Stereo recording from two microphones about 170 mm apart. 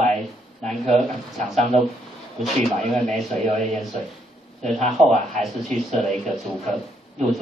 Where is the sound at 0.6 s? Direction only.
5° left (ahead or behind).